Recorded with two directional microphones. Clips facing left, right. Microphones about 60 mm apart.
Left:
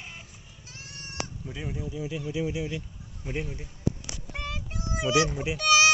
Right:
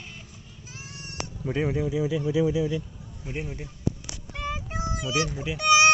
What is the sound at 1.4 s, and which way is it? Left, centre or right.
Speech, right.